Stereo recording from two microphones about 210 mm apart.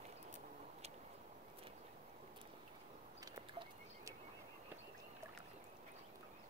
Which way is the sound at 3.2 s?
15° right (ahead or behind).